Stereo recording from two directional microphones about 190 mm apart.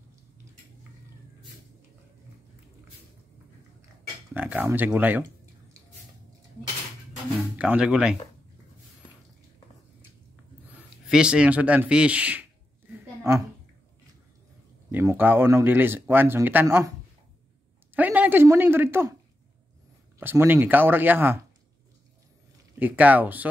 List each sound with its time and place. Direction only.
4.3 s speech: 10° right (ahead or behind)
7.5 s speech: 5° right (ahead or behind)
10.7 s a woman's voice: 5° right (ahead or behind)
14.9 s speech: 10° right (ahead or behind)
17.9 s a sound: 10° right (ahead or behind)
20.2 s speech: 10° right (ahead or behind)
22.8 s speech: 10° right (ahead or behind)